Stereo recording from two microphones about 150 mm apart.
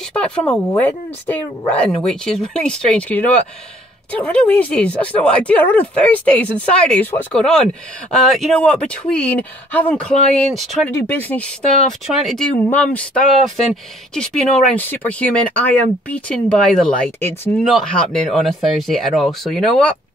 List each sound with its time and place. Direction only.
0.1 s speech: 5° left (ahead or behind)
10.9 s speech: 15° left (ahead or behind)